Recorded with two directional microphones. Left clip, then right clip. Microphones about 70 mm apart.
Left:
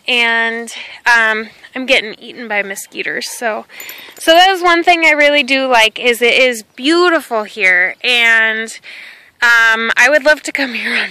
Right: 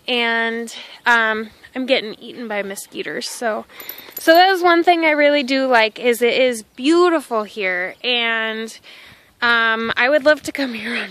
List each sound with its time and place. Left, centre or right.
0.0 s speech: right
1.7 s speech: centre
2.0 s a woman's voice: right
5.7 s speech: right
6.2 s a woman's voice: centre
9.9 s speech: centre